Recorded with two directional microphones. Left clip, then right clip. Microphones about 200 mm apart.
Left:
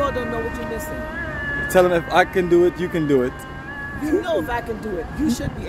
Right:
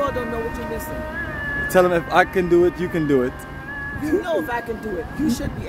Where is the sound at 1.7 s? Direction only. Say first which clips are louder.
Left 1 dB; 5° right (ahead or behind).